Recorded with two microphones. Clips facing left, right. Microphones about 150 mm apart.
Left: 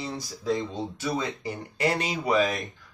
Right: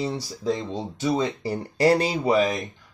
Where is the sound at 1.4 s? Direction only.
35° right (ahead or behind).